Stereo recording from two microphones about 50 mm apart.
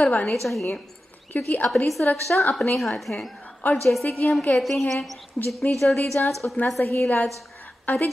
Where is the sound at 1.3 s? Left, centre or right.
Left.